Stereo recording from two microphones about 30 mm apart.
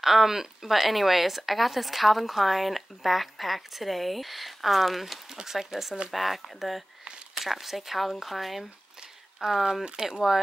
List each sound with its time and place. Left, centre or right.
0.0 s speech: centre
5.3 s speech: centre
10.0 s speech: right